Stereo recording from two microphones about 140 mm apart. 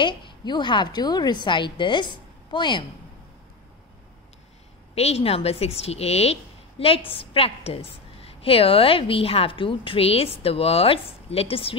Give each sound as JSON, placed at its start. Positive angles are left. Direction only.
{"t": 0.0, "sound": "a woman's voice", "side_deg": 35}
{"t": 4.9, "sound": "a woman's voice", "side_deg": 45}